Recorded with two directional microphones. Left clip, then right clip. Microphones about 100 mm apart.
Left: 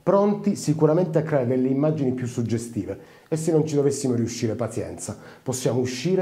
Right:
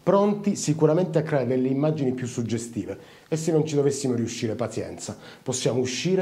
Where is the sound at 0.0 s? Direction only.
30° left (ahead or behind).